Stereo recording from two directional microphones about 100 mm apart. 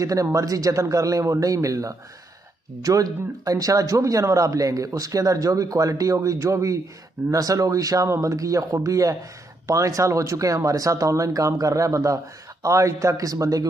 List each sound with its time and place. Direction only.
0.0 s a man's voice: 35° right (ahead or behind)